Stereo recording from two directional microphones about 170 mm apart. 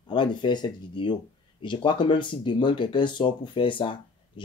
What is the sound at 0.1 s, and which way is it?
Speech, 30° left (ahead or behind).